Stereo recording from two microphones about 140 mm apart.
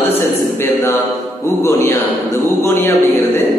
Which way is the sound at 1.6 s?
20° left (ahead or behind).